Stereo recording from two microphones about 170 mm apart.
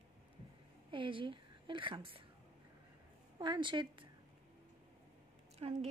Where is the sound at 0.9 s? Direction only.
30° right (ahead or behind).